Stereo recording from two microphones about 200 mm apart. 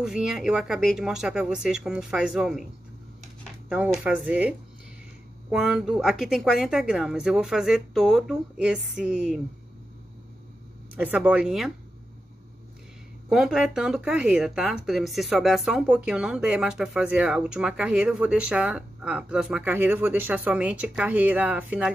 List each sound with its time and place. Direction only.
0.0 s speech: 5° right (ahead or behind)
3.6 s speech: 5° right (ahead or behind)
11.0 s speech: 5° right (ahead or behind)
13.3 s speech: centre (ahead or behind)